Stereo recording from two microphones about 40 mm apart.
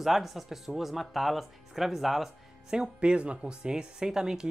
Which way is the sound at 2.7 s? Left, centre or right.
Right.